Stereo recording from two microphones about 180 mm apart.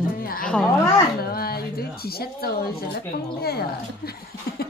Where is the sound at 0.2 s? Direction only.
55° left (ahead or behind).